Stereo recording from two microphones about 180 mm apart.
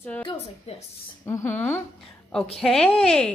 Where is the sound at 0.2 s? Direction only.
30° left (ahead or behind).